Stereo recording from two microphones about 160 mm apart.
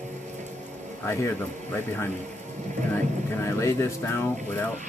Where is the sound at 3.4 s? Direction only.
15° left (ahead or behind).